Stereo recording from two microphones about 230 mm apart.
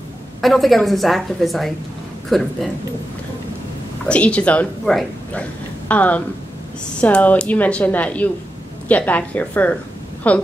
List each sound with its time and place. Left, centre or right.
0.4 s a woman's voice: centre
4.1 s a woman's voice: centre